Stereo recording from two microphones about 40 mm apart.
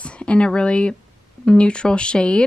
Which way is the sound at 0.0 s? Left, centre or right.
Left.